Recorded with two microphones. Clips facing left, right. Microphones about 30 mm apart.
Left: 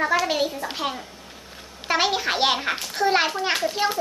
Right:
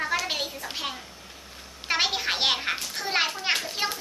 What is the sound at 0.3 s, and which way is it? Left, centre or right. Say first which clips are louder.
Speech: left 7 dB; centre.